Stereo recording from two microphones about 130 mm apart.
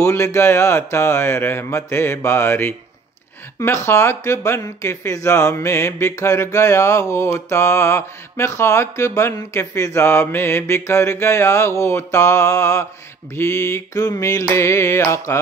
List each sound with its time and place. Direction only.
0.0 s speech: 20° left (ahead or behind)